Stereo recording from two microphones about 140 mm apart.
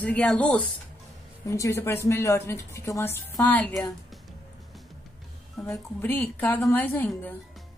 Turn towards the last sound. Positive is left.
turn(degrees=15)  # may be behind; listen again after turning